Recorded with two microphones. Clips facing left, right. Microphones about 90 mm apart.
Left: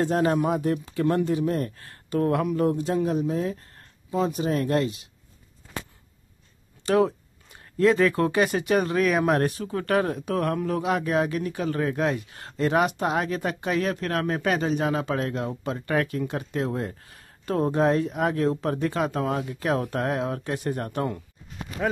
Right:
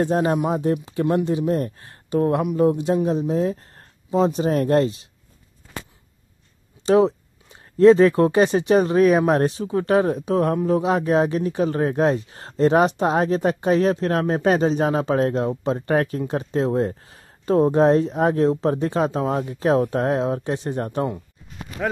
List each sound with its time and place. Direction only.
0.0 s speech: 20° right (ahead or behind)
6.9 s speech: 25° right (ahead or behind)